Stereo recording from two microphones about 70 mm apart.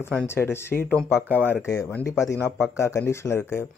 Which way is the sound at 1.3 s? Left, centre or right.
Right.